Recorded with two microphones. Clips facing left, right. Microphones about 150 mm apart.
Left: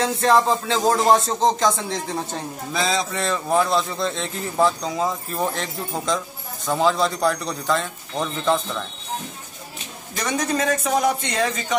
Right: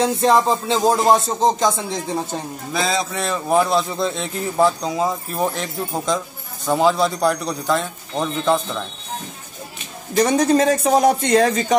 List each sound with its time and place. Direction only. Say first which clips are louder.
0.0 s speech: right 2 dB; 15° right (ahead or behind)
10.1 s speech: right 8 dB; 35° right (ahead or behind)